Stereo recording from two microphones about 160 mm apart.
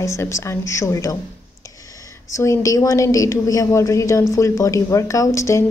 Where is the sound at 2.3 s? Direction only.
20° left (ahead or behind).